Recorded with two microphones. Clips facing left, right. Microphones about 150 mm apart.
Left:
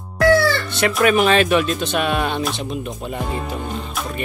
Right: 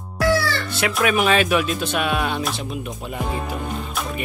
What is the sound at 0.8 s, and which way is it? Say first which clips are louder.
Speech: left 4 dB; 5° right (ahead or behind).